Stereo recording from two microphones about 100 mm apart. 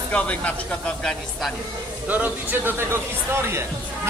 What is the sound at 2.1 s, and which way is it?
Speech, 15° right (ahead or behind).